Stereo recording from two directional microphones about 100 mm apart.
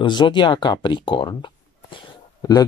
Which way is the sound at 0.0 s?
50° left (ahead or behind).